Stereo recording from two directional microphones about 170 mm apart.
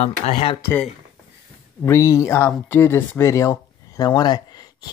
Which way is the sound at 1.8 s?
20° left (ahead or behind).